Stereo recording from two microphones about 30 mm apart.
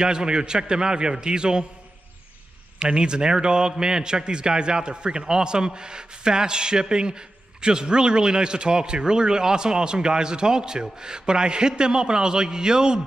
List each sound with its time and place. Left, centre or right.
0.0 s a man's voice: right
2.8 s a man's voice: right